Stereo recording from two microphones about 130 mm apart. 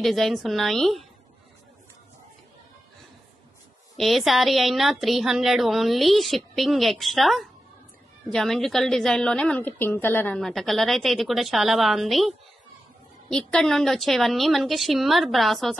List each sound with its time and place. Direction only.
0.0 s a woman's voice: centre (ahead or behind)
3.9 s a woman's voice: centre (ahead or behind)
10.4 s a woman's voice: centre (ahead or behind)